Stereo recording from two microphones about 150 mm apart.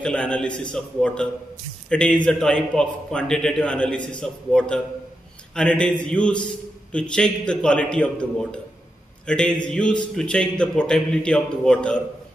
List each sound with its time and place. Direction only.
0.0 s a man's voice: 5° left (ahead or behind)